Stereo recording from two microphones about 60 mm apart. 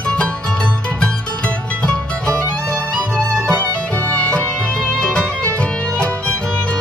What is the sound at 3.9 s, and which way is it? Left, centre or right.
Music, left.